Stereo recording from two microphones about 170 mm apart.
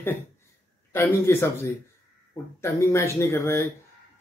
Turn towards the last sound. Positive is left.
turn(degrees=15)  # may be behind; listen again after turning